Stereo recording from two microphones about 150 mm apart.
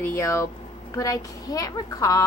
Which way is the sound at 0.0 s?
15° left (ahead or behind).